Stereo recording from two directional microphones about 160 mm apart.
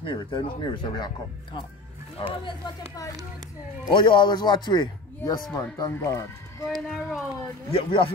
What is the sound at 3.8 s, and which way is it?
Speech, 30° left (ahead or behind).